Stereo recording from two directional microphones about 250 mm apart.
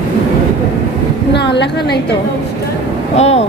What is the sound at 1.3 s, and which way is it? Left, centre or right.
Speech, left.